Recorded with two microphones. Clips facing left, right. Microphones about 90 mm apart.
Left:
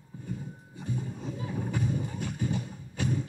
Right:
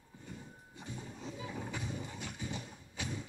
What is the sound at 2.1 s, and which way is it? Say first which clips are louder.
Music: left 10 dB; 50° left (ahead or behind).